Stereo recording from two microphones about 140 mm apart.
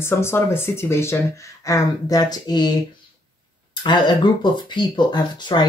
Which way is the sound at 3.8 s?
30° left (ahead or behind).